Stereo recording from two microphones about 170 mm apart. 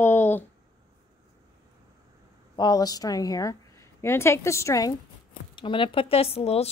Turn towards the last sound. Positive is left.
turn(degrees=35)  # may be behind; listen again after turning